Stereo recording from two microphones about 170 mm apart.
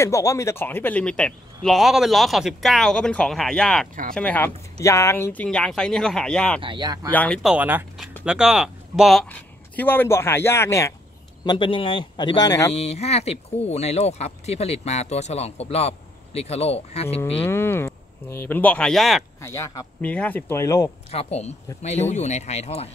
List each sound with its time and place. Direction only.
0.0 s speech: 20° left (ahead or behind)
6.6 s speech: 25° right (ahead or behind)
7.1 s speech: 5° left (ahead or behind)
7.5 s speech: 10° right (ahead or behind); by 11.0 s 15° left (ahead or behind)
11.4 s speech: 30° left (ahead or behind)
12.7 s speech: 40° left (ahead or behind)
17.4 s speech: 15° left (ahead or behind)
19.4 s speech: 15° left (ahead or behind)
21.1 s speech: 40° left (ahead or behind)